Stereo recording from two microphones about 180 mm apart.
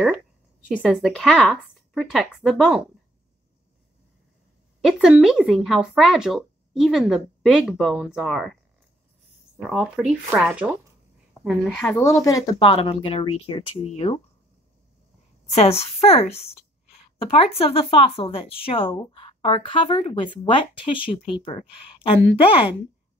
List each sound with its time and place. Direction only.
0.7 s speech: 5° right (ahead or behind)
4.8 s speech: 5° right (ahead or behind)
9.6 s speech: centre (ahead or behind)
12.0 s speech: 15° left (ahead or behind); by 14.1 s 35° left (ahead or behind)
15.5 s a woman's voice: 35° left (ahead or behind)